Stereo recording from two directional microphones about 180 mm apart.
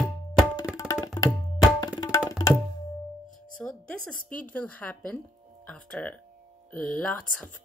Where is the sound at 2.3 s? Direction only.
20° left (ahead or behind).